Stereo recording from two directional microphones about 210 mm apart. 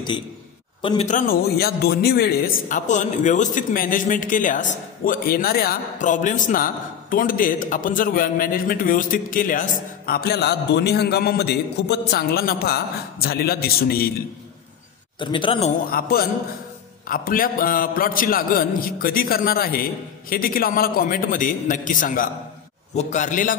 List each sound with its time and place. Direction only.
0.8 s a man's voice: 30° left (ahead or behind)
15.1 s speech: 25° left (ahead or behind)
15.8 s a man's voice: 45° left (ahead or behind)